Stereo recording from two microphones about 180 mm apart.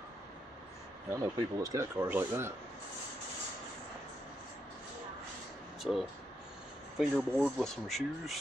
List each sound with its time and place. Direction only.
1.1 s speech: 20° right (ahead or behind)
5.8 s speech: centre (ahead or behind)